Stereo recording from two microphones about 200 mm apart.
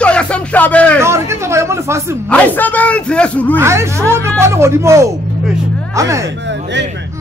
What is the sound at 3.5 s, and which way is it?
A man's voice, 15° right (ahead or behind).